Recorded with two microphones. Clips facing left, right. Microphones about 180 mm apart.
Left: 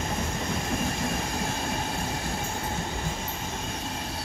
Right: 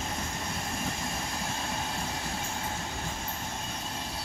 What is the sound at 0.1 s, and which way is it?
Train, 90° left.